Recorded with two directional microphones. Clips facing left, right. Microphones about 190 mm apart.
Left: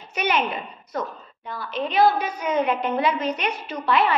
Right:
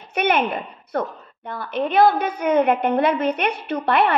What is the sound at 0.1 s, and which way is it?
A woman's voice, 55° right (ahead or behind).